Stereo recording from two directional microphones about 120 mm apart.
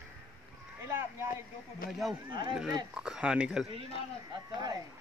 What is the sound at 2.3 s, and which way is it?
Speech, 40° right (ahead or behind).